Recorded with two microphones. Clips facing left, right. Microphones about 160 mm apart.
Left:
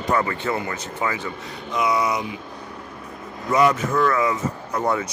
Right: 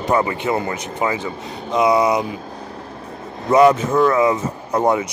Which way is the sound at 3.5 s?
25° right (ahead or behind).